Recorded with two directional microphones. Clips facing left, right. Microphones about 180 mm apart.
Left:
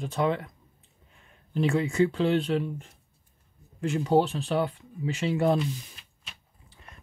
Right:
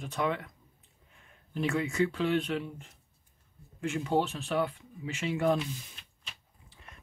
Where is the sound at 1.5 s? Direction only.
30° left (ahead or behind).